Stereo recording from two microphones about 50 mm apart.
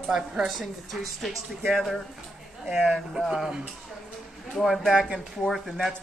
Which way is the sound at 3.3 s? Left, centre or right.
Centre.